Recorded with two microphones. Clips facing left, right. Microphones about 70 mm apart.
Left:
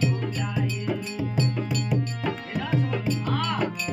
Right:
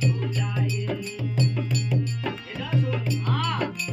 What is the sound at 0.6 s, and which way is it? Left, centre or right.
Music, centre.